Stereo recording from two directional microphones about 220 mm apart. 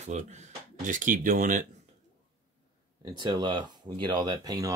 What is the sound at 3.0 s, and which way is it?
Speech, 20° right (ahead or behind).